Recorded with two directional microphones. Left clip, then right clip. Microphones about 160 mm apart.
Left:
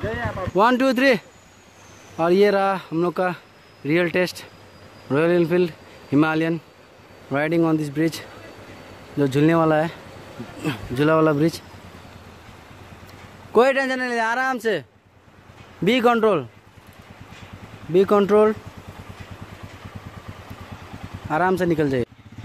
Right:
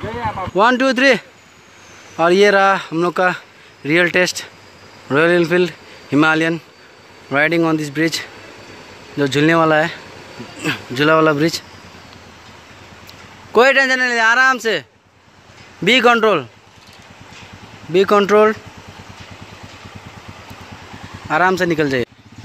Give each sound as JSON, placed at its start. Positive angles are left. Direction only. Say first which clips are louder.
{"t": 0.0, "sound": "a sound", "louder": "right 4 dB", "side_deg": -30}
{"t": 0.6, "sound": "a man's voice", "louder": "right 4 dB", "side_deg": 0}
{"t": 13.5, "sound": "a man's voice", "louder": "right 6 dB", "side_deg": 10}
{"t": 17.9, "sound": "a man's voice", "louder": "right 4 dB", "side_deg": 10}
{"t": 21.3, "sound": "speech", "louder": "right 5 dB", "side_deg": 5}